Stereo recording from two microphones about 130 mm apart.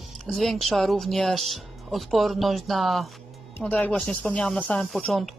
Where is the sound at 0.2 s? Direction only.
Centre (ahead or behind).